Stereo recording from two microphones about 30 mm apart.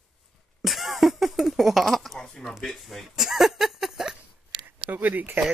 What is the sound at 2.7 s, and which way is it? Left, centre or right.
Speech, centre.